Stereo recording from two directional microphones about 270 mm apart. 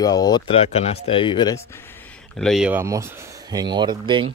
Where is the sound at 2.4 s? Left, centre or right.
Centre.